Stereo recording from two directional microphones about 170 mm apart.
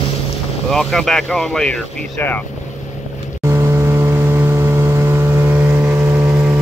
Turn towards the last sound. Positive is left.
turn(degrees=-10)  # may be behind; listen again after turning